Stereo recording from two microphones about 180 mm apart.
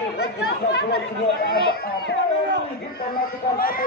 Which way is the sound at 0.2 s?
70° left (ahead or behind).